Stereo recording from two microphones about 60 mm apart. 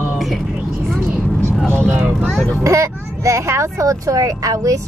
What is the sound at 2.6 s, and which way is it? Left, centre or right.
Speech, right.